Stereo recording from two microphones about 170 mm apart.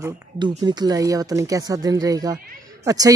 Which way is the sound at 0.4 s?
25° right (ahead or behind).